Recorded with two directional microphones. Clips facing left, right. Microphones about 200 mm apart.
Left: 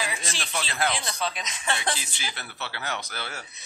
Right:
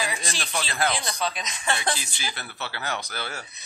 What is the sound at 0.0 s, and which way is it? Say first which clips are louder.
Speech: right 2 dB; 40° right (ahead or behind).